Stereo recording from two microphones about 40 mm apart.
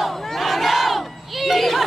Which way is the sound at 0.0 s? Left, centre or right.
Centre.